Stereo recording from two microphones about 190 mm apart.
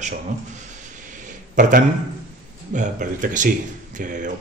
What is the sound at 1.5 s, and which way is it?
A man's voice, 45° right (ahead or behind).